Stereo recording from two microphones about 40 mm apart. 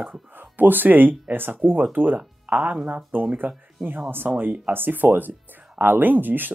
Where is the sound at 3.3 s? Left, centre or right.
Right.